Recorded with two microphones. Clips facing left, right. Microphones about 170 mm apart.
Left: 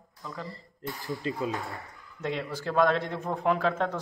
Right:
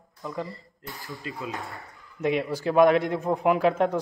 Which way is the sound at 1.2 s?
25° left (ahead or behind).